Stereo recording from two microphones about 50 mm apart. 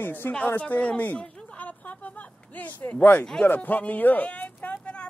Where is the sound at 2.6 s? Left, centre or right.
Left.